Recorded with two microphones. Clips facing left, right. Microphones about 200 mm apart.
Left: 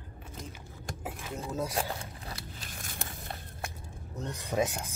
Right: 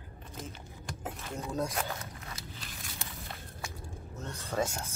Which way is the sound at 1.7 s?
35° left (ahead or behind).